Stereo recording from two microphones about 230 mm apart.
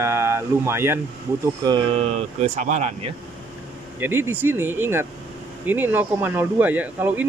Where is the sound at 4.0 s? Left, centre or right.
Centre.